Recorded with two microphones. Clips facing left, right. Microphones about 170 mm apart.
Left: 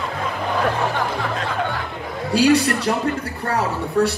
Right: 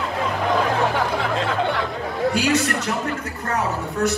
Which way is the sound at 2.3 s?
35° left (ahead or behind).